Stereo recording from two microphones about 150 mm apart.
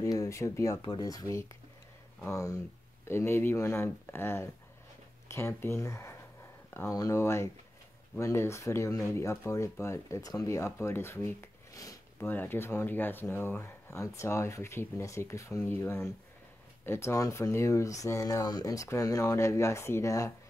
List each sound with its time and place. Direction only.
0.0 s speech: 20° left (ahead or behind)